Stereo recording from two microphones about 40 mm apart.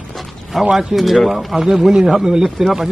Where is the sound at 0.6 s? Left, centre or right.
Centre.